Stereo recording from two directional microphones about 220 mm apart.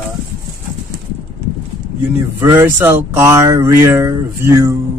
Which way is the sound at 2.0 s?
10° right (ahead or behind).